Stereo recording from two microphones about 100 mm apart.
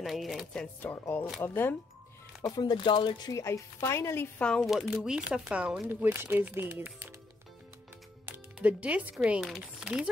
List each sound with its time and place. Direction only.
0.0 s speech: centre (ahead or behind)
0.8 s speech: 20° left (ahead or behind)
2.4 s speech: 45° left (ahead or behind)
3.3 s speech: 30° left (ahead or behind)
4.4 s speech: 10° left (ahead or behind)
4.6 s speech: centre (ahead or behind)
5.9 s speech: 20° right (ahead or behind)
8.5 s speech: 15° right (ahead or behind)